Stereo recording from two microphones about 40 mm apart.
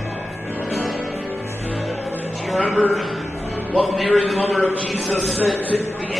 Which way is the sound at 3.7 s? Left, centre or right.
Centre.